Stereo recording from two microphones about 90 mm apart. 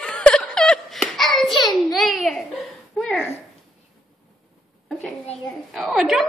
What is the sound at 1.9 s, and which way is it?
Babbling, centre (ahead or behind).